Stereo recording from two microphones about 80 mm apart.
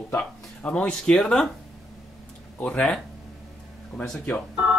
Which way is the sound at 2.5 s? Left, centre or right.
Centre.